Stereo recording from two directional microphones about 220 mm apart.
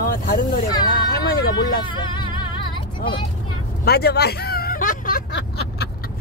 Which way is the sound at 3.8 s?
45° left (ahead or behind).